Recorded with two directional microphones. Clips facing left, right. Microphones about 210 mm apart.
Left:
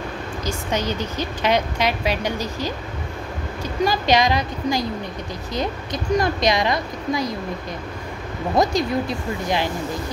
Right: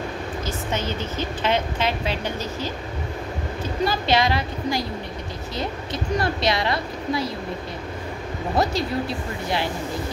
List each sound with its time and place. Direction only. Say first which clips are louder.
0.5 s a woman's voice: left 4 dB; 15° left (ahead or behind)
3.8 s a woman's voice: left 3 dB; 15° left (ahead or behind)
6.1 s a woman's voice: left 4 dB; 15° left (ahead or behind)
8.5 s a woman's voice: left 4 dB; 15° left (ahead or behind)